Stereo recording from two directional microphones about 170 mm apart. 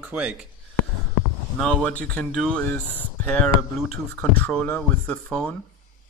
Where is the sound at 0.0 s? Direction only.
10° right (ahead or behind).